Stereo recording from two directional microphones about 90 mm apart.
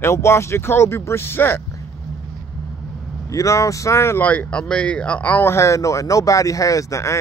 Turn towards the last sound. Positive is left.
turn(degrees=35)  # may be behind; listen again after turning